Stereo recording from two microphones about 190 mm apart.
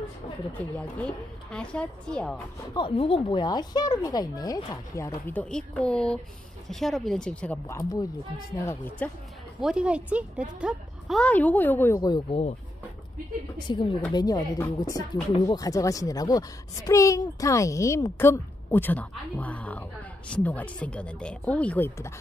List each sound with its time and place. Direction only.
0.6 s a woman's voice: 10° left (ahead or behind)
2.7 s a woman's voice: 25° left (ahead or behind); by 7.6 s 5° left (ahead or behind)
7.6 s speech: 20° left (ahead or behind)
8.6 s speech: 10° left (ahead or behind)
9.6 s a woman's voice: 5° right (ahead or behind); by 12.5 s 30° left (ahead or behind)
13.7 s speech: 25° left (ahead or behind)